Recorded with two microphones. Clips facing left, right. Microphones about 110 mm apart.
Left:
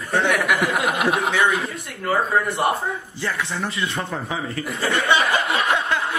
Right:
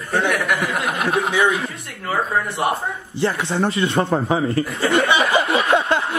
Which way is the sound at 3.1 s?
25° right (ahead or behind).